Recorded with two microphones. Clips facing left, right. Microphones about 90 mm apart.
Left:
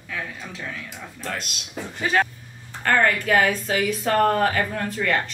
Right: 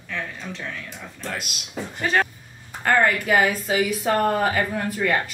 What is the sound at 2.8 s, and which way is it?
Speech, 10° right (ahead or behind).